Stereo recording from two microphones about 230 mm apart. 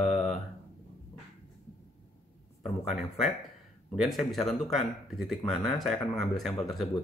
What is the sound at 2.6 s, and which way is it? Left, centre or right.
A man's voice, centre.